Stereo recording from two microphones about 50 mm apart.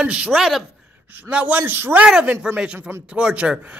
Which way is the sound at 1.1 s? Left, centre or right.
Right.